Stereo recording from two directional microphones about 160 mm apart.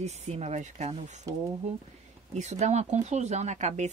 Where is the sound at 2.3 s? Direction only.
45° right (ahead or behind).